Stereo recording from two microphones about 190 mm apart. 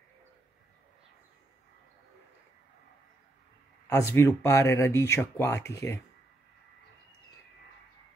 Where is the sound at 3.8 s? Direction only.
15° left (ahead or behind).